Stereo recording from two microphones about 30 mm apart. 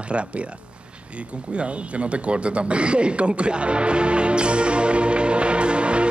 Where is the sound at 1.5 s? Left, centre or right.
Right.